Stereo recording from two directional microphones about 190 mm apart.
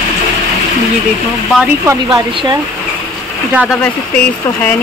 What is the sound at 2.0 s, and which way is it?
Speech, 25° right (ahead or behind).